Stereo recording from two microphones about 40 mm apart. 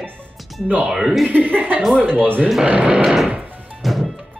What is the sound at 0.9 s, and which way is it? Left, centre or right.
Speech, centre.